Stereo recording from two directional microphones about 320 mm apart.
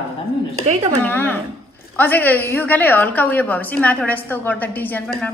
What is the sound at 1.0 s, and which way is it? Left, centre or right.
A woman's voice, centre.